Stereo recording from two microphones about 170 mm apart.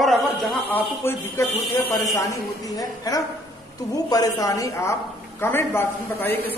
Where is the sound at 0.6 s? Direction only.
10° left (ahead or behind).